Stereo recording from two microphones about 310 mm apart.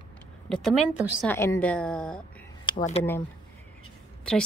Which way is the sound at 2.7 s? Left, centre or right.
Left.